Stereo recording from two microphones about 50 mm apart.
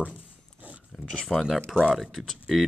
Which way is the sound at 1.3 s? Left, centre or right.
Centre.